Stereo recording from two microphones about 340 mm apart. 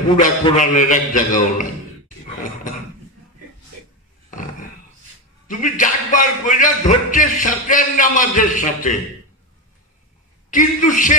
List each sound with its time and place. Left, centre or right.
0.2 s speech: left
4.3 s a sound: left
5.5 s speech: left
10.5 s speech: left